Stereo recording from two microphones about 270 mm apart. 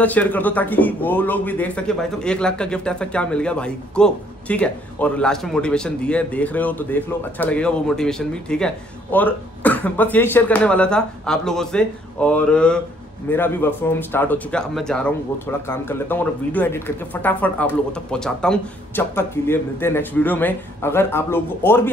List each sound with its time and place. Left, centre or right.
0.0 s speech: centre